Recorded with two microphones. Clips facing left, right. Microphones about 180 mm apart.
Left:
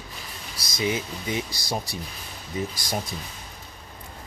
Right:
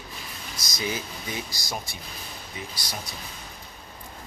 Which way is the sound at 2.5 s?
45° left (ahead or behind).